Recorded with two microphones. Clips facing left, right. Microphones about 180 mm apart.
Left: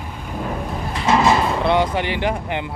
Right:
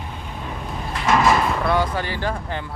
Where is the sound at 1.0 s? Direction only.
25° left (ahead or behind).